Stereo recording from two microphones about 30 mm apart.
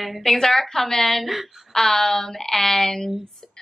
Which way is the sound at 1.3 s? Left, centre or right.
Centre.